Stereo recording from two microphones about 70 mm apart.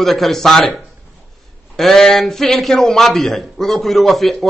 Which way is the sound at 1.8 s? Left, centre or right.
Centre.